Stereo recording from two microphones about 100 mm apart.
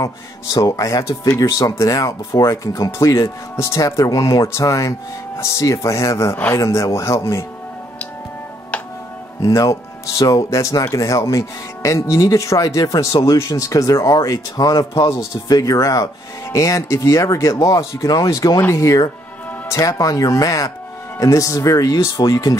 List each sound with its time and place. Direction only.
0.0 s speech: 35° left (ahead or behind)
6.3 s speech: 20° left (ahead or behind)
6.6 s speech: 30° left (ahead or behind)
9.4 s speech: 35° left (ahead or behind)